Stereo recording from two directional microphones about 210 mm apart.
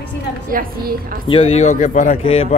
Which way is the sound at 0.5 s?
45° right (ahead or behind).